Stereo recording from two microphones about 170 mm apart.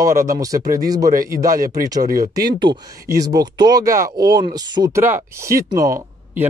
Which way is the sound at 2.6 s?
25° right (ahead or behind).